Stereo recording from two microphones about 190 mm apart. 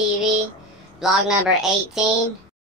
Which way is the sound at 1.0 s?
Centre (ahead or behind).